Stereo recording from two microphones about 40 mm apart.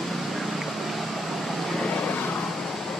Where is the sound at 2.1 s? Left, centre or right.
Left.